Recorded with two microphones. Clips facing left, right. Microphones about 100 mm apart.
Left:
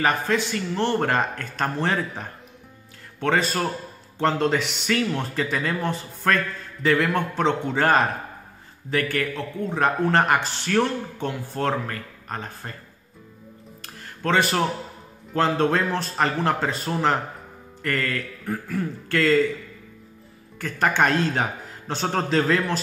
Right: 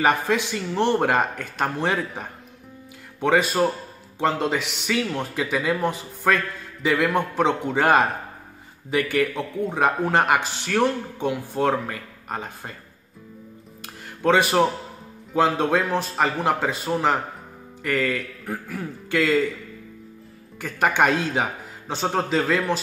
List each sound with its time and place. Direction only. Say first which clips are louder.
0.0 s a man's voice: right 2 dB; 15° right (ahead or behind)
14.2 s a man's voice: right 3 dB; 15° right (ahead or behind)
20.5 s a man's voice: right 1 dB; 10° right (ahead or behind)